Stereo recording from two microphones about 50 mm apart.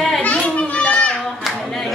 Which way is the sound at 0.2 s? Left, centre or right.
Left.